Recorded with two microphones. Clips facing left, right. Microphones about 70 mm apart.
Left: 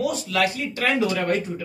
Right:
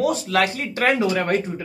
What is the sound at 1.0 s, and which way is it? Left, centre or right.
Speech, right.